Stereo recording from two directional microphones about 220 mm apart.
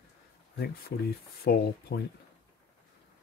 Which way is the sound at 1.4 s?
45° left (ahead or behind).